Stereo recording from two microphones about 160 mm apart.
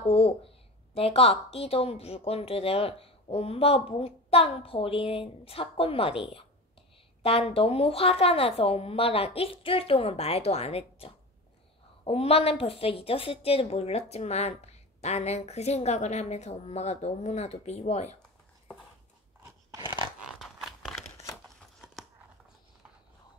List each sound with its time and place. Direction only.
0.0 s a woman's voice: 35° left (ahead or behind)
19.8 s dog: 30° left (ahead or behind)
20.2 s a sound: centre (ahead or behind)